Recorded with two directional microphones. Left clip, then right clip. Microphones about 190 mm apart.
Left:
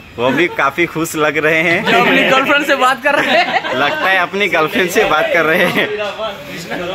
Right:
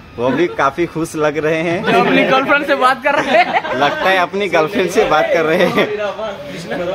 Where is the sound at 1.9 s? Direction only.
25° left (ahead or behind).